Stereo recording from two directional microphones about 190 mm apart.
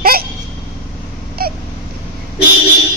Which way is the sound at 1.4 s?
55° right (ahead or behind).